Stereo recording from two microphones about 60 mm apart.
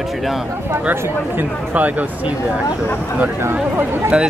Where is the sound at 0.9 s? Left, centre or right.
Right.